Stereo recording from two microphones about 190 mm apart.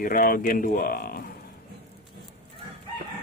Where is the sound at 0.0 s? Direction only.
50° left (ahead or behind).